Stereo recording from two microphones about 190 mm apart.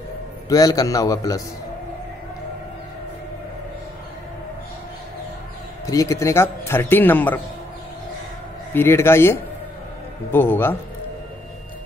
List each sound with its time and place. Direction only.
0.5 s a man's voice: 20° left (ahead or behind)
5.9 s a man's voice: 15° left (ahead or behind)
8.7 s a man's voice: 10° left (ahead or behind)